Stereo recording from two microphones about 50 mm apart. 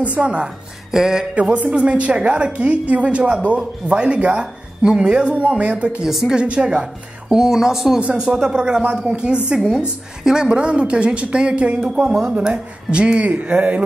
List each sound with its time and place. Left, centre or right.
0.0 s speech: right
0.9 s a woman's voice: centre
1.3 s speech: right
6.0 s a woman's voice: centre
6.3 s a woman's voice: right